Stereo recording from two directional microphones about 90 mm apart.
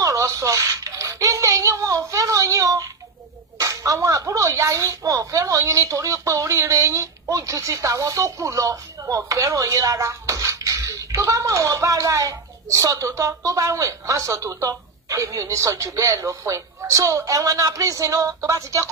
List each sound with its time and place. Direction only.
0.0 s speech: 35° right (ahead or behind)